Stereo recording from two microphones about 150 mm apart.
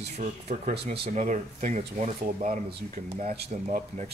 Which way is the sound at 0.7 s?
90° right.